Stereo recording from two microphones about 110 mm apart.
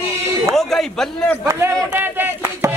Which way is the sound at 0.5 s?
5° left (ahead or behind).